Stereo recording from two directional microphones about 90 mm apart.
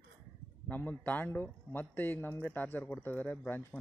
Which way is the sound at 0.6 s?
20° left (ahead or behind).